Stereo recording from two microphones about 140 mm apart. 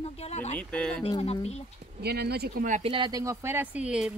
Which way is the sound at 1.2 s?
50° left (ahead or behind).